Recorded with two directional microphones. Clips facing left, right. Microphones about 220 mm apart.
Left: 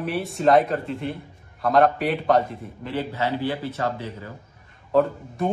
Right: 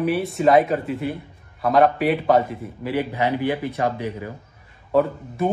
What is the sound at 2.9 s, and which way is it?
A man's voice, 15° right (ahead or behind).